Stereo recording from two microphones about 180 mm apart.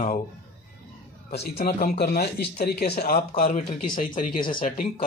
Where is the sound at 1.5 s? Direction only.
55° left (ahead or behind).